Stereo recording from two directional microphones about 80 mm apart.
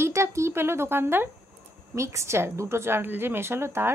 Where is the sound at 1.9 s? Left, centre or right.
Right.